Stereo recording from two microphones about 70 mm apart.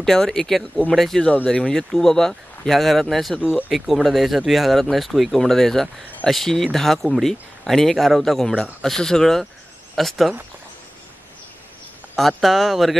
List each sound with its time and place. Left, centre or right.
0.0 s speech: centre
12.2 s speech: centre